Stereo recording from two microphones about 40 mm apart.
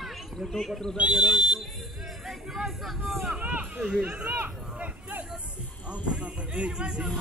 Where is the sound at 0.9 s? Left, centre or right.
Right.